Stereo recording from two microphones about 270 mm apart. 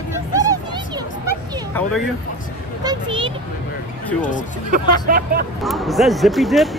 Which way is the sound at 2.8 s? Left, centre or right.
Centre.